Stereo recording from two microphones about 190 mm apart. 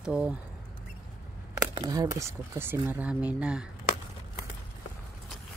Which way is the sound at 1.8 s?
20° right (ahead or behind).